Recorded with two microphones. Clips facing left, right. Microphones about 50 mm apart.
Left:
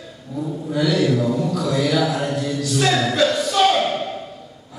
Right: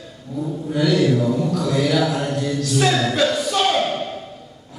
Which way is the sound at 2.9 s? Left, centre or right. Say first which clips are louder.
Even; centre.